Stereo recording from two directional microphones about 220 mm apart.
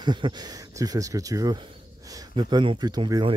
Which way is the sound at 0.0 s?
20° right (ahead or behind).